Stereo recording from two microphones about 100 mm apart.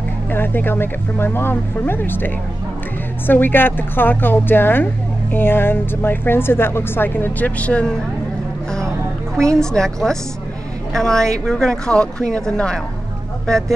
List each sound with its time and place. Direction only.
0.3 s speech: 20° left (ahead or behind)
9.4 s a woman's voice: 5° left (ahead or behind)